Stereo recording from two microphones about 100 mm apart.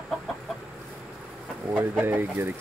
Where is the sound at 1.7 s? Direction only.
20° right (ahead or behind).